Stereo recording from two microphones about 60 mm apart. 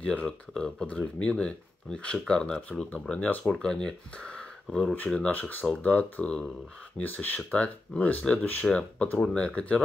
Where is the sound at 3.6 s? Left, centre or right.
Centre.